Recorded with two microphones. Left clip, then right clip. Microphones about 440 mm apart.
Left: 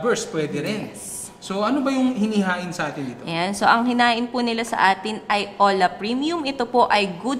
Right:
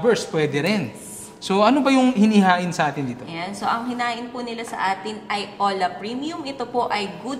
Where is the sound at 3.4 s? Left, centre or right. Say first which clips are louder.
Left 6 dB; left.